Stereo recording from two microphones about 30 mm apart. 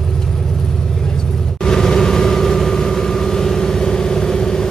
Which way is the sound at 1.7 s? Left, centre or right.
Centre.